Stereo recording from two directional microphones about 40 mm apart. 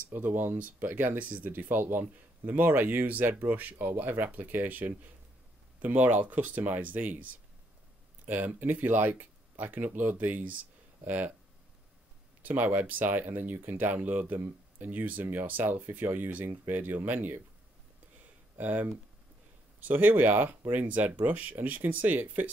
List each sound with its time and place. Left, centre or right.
0.1 s speech: right
8.3 s speech: right
12.4 s speech: right
18.6 s speech: right
20.7 s speech: right